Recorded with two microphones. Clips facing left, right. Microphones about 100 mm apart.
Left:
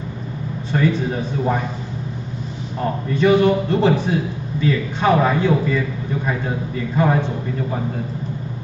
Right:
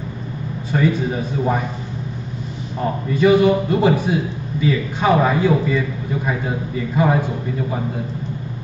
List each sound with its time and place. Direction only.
0.7 s a man's voice: 5° right (ahead or behind)
2.8 s a man's voice: 5° right (ahead or behind)